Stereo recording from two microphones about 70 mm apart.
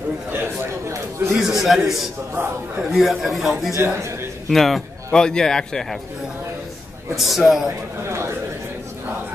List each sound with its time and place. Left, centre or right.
0.3 s chatter: right
1.3 s a man's voice: centre
3.7 s a man's voice: right
4.5 s speech: centre
7.2 s a man's voice: centre